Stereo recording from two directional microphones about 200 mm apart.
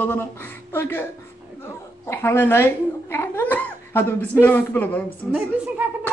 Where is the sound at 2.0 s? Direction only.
10° left (ahead or behind).